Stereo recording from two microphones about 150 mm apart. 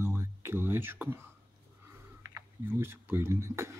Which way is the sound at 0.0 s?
15° right (ahead or behind).